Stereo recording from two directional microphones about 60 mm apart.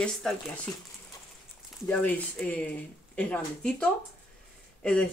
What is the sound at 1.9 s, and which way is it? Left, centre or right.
Speech, left.